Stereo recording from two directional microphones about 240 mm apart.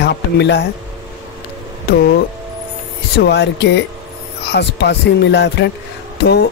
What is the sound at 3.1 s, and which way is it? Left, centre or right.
Speech, left.